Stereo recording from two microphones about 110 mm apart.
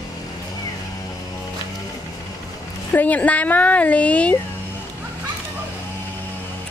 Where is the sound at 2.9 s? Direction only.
15° left (ahead or behind).